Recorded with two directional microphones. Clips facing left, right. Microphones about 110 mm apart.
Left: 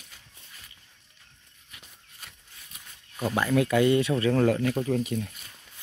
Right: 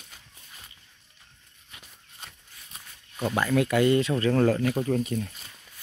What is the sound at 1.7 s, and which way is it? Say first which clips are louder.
Walk: right 1 dB; 25° right (ahead or behind).